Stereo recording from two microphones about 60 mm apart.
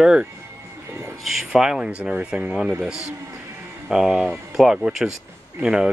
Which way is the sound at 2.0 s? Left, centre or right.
Centre.